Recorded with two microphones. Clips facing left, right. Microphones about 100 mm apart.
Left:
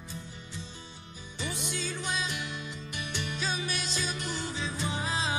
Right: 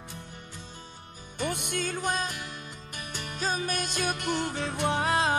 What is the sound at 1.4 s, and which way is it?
Music, 55° right (ahead or behind).